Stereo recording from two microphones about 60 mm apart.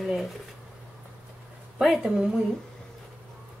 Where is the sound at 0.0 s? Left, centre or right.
Centre.